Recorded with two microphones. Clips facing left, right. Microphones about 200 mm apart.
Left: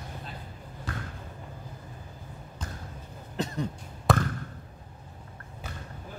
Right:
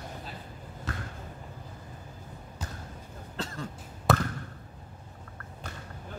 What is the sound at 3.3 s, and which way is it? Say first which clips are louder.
Cough: left 6 dB; 20° left (ahead or behind).